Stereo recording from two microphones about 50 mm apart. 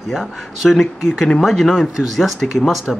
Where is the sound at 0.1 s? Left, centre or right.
Centre.